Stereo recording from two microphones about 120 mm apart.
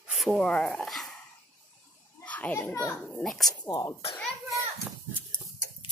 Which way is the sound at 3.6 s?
30° left (ahead or behind).